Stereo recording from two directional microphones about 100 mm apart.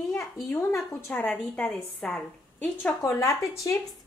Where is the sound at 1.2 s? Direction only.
15° left (ahead or behind).